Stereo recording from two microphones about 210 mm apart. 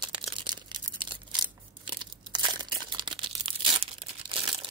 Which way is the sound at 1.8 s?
25° right (ahead or behind).